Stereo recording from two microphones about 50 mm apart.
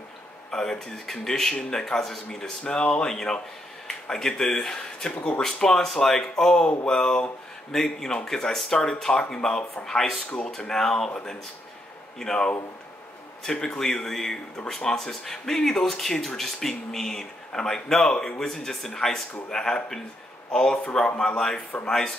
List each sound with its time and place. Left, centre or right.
0.5 s speech: centre
3.1 s speech: centre
12.2 s speech: centre